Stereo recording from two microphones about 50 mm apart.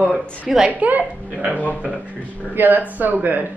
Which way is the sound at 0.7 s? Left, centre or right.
Right.